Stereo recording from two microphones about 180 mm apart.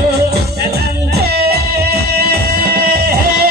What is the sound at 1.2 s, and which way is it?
Music, 60° right (ahead or behind).